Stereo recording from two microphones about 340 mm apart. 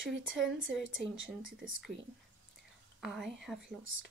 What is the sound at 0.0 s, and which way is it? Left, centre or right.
Speech, right.